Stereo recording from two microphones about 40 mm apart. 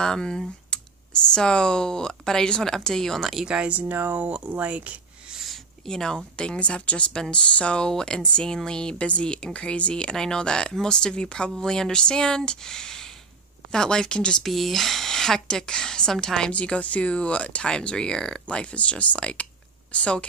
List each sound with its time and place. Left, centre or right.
0.0 s a woman's voice: centre
3.4 s speech: right
3.7 s speech: right
5.9 s a woman's voice: centre
6.6 s speech: left
8.9 s speech: left
10.1 s a woman's voice: centre
14.4 s a woman's voice: centre
16.6 s speech: left